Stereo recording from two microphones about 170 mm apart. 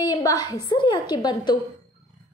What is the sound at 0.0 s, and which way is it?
A woman's voice, 20° left (ahead or behind).